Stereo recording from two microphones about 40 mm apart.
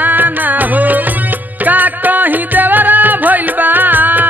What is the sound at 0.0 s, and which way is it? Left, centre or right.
Music, right.